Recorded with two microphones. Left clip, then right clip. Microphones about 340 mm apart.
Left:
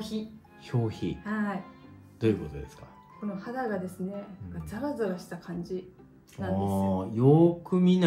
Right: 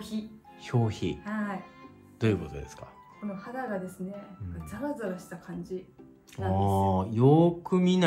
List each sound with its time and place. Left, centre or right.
0.7 s speech: right
1.2 s speech: centre
2.1 s speech: right
3.3 s speech: centre
6.3 s speech: right